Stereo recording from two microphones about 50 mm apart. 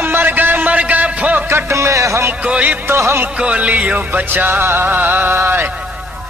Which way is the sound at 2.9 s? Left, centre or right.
Right.